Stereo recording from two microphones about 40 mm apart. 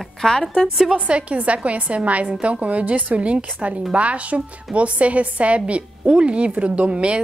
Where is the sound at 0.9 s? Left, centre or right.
Right.